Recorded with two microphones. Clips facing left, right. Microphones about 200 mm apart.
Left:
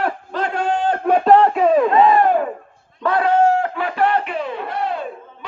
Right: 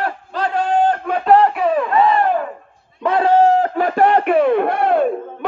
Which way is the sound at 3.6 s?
45° right (ahead or behind).